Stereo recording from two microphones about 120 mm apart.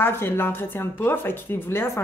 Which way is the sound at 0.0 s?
20° left (ahead or behind).